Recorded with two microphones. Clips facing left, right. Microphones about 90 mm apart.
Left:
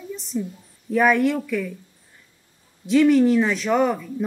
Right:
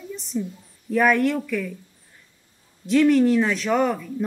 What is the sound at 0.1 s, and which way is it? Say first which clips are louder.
A woman's voice: even; centre (ahead or behind).